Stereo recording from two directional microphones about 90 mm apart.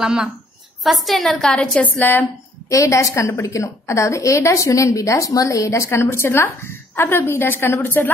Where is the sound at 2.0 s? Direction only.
20° left (ahead or behind).